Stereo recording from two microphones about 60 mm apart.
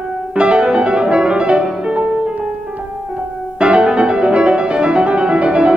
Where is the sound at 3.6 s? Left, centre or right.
Centre.